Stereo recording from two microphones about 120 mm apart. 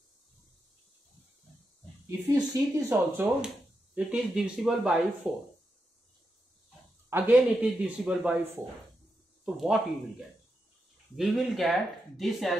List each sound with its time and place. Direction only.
2.0 s speech: 30° right (ahead or behind)
2.9 s a man's voice: 15° right (ahead or behind)
7.1 s a man's voice: 15° right (ahead or behind)
9.4 s speech: 5° right (ahead or behind)
11.1 s speech: centre (ahead or behind)